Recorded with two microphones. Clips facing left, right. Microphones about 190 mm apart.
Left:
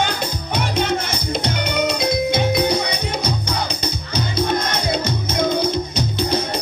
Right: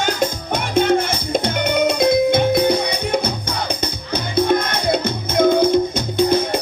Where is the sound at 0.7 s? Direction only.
50° right (ahead or behind).